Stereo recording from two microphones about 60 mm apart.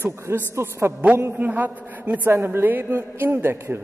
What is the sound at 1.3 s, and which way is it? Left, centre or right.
A woman's voice, right.